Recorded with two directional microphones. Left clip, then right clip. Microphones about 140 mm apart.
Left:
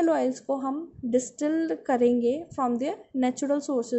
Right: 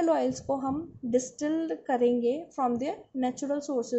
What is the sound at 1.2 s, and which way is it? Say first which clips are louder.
A woman's voice: left 3 dB; 30° left (ahead or behind).